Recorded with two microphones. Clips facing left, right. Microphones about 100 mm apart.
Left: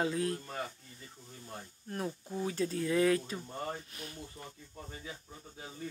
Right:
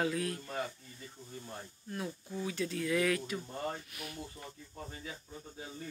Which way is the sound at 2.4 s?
35° left (ahead or behind).